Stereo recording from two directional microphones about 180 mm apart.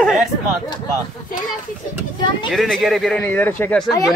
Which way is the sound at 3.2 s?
10° left (ahead or behind).